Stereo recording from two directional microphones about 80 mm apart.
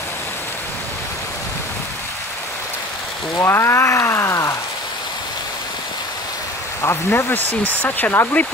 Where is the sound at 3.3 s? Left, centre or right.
Left.